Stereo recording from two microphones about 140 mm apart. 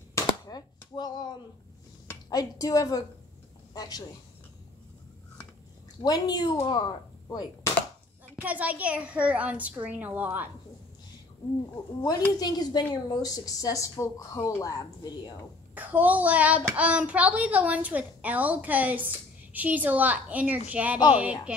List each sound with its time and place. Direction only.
0.1 s cap gun: 30° left (ahead or behind)
2.2 s speech: 25° left (ahead or behind)
6.0 s speech: 25° left (ahead or behind)
8.4 s a child's voice: 10° right (ahead or behind)
11.7 s speech: 25° left (ahead or behind)
15.7 s a child's voice: 10° right (ahead or behind)